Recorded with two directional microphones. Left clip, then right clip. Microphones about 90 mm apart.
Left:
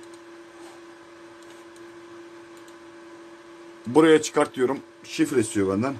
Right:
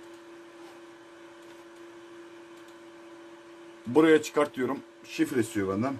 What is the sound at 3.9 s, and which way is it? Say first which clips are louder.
Speech: left 4 dB; 70° left (ahead or behind).